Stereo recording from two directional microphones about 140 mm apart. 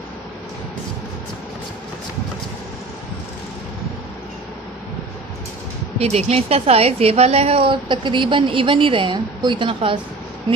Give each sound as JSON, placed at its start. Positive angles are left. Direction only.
{"t": 5.9, "sound": "a woman's voice", "side_deg": -50}